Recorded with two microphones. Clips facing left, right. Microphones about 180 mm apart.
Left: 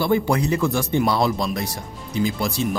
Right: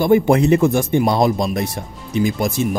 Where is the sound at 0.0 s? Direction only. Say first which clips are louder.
Right 6 dB; 20° right (ahead or behind).